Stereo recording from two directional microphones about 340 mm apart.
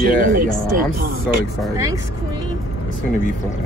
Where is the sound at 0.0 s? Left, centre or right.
Right.